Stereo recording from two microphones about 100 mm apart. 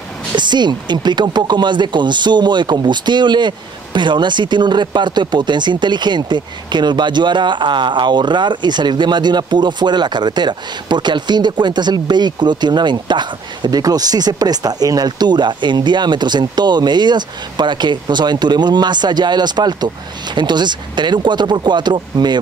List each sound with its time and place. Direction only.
0.4 s speech: 50° right (ahead or behind)